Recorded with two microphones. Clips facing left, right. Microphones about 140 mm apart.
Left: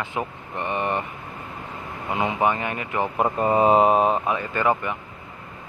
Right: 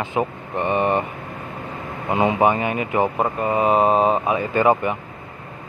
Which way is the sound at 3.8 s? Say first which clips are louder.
Right 1 dB; 10° left (ahead or behind).